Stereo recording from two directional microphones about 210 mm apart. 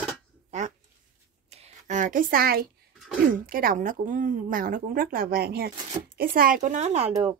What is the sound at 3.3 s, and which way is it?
A woman's voice, 40° right (ahead or behind).